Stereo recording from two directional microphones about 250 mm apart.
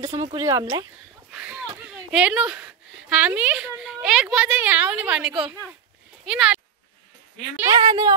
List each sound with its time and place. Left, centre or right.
0.2 s speech: centre
1.3 s speech: centre